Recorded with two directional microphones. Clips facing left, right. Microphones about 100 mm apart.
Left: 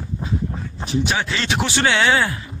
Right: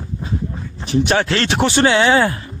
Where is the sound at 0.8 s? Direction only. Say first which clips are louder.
Right 6 dB; 65° right (ahead or behind).